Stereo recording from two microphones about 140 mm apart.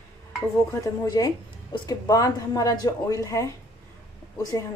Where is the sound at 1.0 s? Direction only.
25° left (ahead or behind).